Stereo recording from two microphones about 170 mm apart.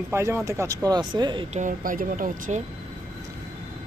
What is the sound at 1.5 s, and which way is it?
Speech, 50° right (ahead or behind).